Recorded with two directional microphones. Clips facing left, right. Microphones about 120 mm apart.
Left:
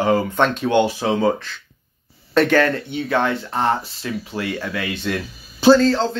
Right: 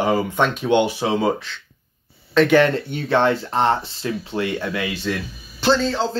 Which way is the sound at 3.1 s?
30° right (ahead or behind).